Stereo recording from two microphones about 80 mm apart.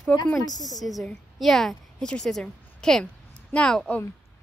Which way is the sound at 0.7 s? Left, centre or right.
Centre.